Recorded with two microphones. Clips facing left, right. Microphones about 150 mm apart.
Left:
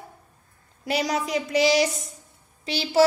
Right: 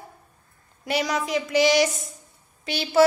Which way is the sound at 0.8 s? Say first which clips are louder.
Even; 30° left (ahead or behind).